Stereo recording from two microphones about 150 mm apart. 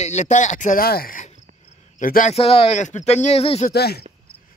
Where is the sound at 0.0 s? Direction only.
50° left (ahead or behind).